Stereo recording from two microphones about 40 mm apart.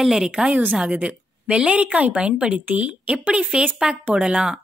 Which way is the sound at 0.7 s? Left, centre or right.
Right.